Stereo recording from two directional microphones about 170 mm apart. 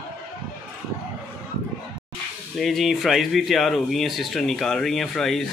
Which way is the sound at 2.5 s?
Centre (ahead or behind).